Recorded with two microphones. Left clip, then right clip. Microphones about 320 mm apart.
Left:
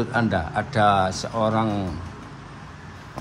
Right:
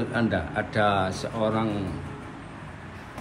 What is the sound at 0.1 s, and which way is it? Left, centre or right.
Speech, centre.